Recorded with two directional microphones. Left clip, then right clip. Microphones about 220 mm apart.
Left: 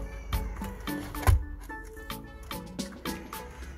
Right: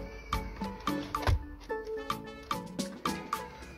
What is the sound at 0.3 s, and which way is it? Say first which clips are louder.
Music: right 4 dB; centre (ahead or behind).